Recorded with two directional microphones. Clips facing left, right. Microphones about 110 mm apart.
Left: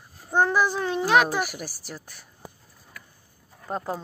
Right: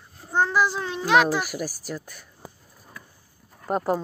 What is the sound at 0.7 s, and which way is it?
Speech, 50° left (ahead or behind).